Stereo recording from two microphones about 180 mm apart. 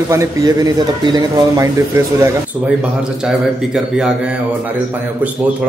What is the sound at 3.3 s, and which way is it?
Speech, 5° right (ahead or behind).